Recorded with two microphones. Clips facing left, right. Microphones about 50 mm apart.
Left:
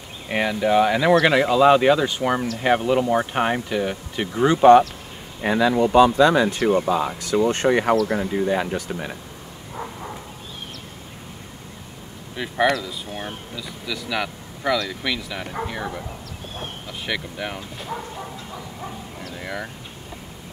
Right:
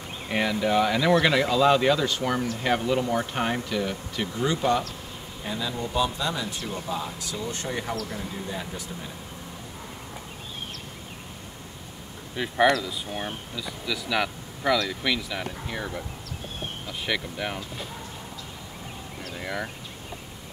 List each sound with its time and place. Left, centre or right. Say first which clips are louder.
0.3 s speech: left 4 dB; centre
4.4 s speech: left 12 dB; left
5.4 s speech: left 13 dB; left
7.4 s speech: left 12 dB; left
12.4 s speech: left 1 dB; centre
19.3 s a sound: left 1 dB; centre